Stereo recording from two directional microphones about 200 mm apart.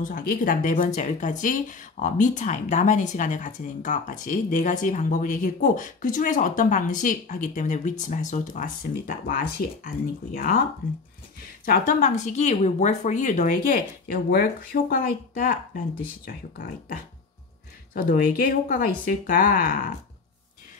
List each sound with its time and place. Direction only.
0.0 s speech: 45° left (ahead or behind)
11.6 s speech: 40° left (ahead or behind)
17.9 s speech: 45° left (ahead or behind)